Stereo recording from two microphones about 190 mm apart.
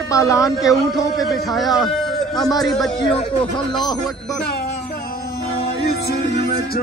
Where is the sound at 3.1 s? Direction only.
25° left (ahead or behind).